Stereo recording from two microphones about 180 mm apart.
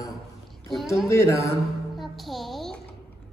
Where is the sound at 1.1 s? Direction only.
15° left (ahead or behind).